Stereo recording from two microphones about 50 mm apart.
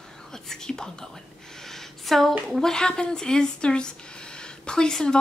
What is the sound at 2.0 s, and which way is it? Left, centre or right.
Speech, centre.